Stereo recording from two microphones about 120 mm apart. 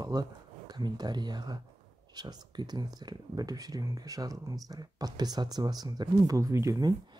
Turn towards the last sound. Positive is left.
turn(degrees=-30)  # may be behind; listen again after turning